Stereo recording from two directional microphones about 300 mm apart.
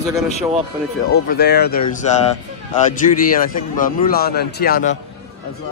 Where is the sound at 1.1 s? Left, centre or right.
Left.